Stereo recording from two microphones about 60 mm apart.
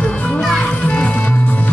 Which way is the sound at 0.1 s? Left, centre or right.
Centre.